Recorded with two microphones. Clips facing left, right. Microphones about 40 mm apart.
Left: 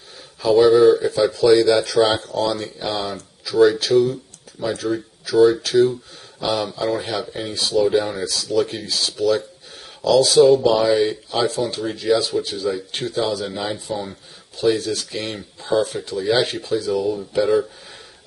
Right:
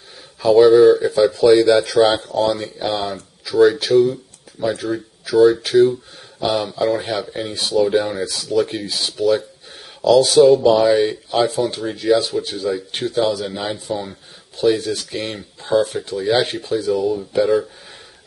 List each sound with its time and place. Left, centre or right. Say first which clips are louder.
0.4 s speech: right 3 dB; centre
4.1 s a sound: right 1 dB; centre
4.8 s speech: even; centre
8.8 s speech: even; centre
9.1 s speech: right 3 dB; centre